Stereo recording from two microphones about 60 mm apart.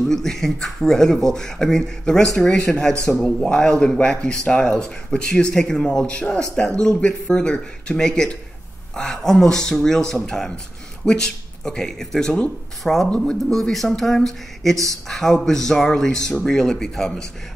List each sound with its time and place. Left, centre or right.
0.1 s speech: centre